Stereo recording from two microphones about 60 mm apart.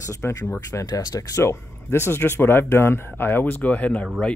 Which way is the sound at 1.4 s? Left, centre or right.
Left.